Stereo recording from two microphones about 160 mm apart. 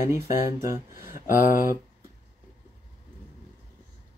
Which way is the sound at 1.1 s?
55° left (ahead or behind).